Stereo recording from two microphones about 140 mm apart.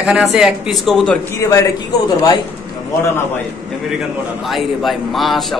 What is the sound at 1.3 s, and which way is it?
Speech, 20° left (ahead or behind).